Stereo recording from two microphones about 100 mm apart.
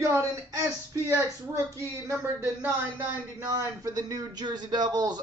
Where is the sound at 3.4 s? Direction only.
35° right (ahead or behind).